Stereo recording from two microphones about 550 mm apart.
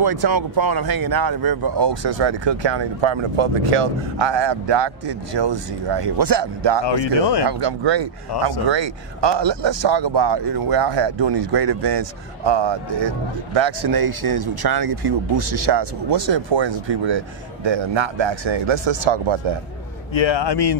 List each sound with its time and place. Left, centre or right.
0.0 s speech: right
6.8 s speech: left
7.4 s speech: right
8.3 s speech: left
8.6 s a man's voice: right
20.2 s speech: left